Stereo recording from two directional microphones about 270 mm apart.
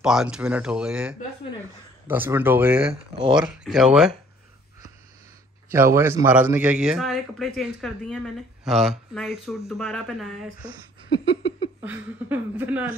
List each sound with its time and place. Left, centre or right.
0.0 s a man's voice: centre
2.9 s speech: centre
3.4 s a man's voice: centre
5.7 s a man's voice: centre
10.6 s a sound: centre
11.8 s speech: centre